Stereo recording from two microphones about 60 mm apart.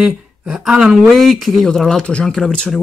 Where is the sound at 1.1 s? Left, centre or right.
Centre.